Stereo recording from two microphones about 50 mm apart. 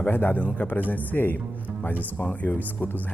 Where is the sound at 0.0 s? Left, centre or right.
Left.